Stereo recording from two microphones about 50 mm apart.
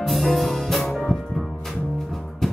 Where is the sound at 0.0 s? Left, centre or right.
Centre.